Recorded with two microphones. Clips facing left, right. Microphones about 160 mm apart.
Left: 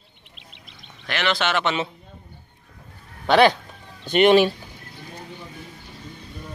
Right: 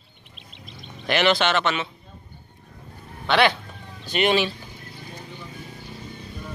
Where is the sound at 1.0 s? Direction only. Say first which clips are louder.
Right 5 dB; 15° right (ahead or behind).